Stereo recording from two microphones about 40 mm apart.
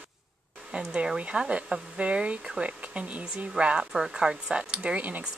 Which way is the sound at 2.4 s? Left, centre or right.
Centre.